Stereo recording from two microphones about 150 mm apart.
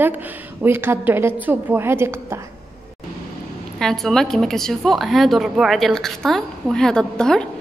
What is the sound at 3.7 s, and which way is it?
A woman's voice, 5° left (ahead or behind).